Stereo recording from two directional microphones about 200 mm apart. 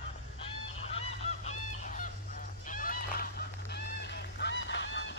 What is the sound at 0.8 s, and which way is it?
Goose, 35° left (ahead or behind).